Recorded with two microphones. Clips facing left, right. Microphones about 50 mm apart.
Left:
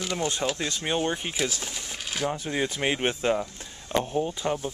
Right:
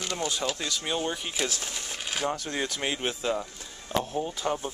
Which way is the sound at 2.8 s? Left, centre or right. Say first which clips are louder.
Left 6 dB; left.